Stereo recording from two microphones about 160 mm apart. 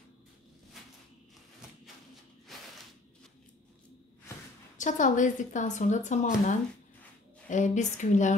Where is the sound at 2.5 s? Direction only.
Centre (ahead or behind).